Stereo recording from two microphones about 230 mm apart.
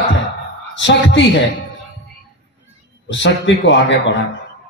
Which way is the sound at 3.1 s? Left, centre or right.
Left.